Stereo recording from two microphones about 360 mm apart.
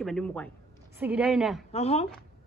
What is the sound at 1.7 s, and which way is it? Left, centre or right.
Speech, centre.